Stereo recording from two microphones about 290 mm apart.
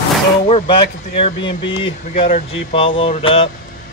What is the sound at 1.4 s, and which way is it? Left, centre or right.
Speech, left.